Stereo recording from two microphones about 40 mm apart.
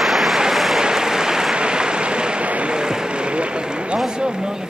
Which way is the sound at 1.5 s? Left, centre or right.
Right.